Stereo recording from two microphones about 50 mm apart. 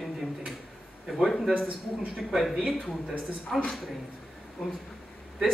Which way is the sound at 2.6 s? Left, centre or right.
Centre.